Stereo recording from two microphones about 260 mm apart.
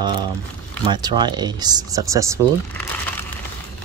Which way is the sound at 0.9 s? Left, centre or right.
Centre.